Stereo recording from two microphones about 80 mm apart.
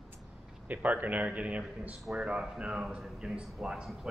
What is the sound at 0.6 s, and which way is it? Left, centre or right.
A man's voice, centre.